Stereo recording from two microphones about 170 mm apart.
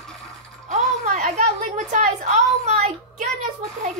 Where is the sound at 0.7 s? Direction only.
45° right (ahead or behind).